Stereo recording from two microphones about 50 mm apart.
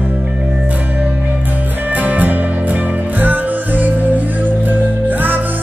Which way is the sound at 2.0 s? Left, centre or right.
Right.